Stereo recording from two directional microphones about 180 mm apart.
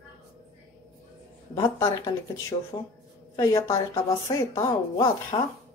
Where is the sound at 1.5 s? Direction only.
20° left (ahead or behind).